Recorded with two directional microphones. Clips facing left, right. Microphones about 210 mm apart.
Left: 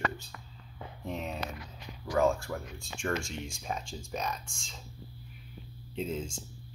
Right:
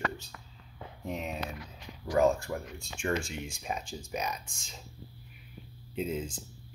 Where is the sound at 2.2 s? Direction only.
15° right (ahead or behind).